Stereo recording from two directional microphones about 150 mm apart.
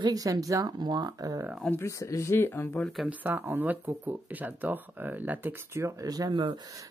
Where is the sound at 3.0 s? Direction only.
10° right (ahead or behind); by 6.5 s 30° right (ahead or behind).